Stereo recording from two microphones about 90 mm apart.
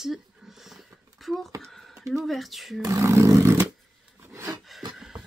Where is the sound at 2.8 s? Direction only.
35° right (ahead or behind).